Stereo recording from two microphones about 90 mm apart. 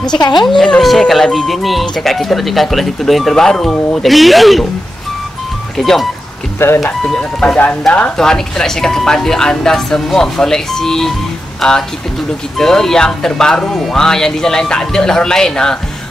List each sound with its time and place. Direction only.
0.0 s a woman's voice: 55° left (ahead or behind)
0.5 s speech: 5° left (ahead or behind)
5.8 s speech: centre (ahead or behind)